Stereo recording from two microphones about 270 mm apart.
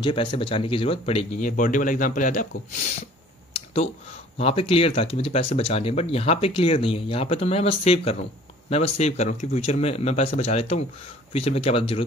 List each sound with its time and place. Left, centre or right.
0.0 s speech: centre
3.5 s computer keyboard: left
4.4 s speech: left